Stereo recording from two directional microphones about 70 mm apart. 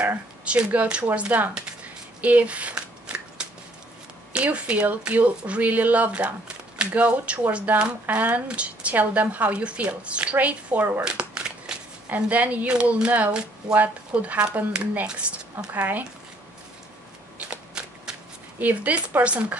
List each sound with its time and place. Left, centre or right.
0.5 s speech: centre
2.2 s shuffling cards: right
4.3 s speech: centre
11.1 s crumpling: centre
12.3 s speech: right
15.7 s speech: right
17.4 s a sound: centre
18.6 s speech: right